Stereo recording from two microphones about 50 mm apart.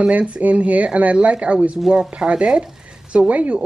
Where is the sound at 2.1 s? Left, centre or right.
Centre.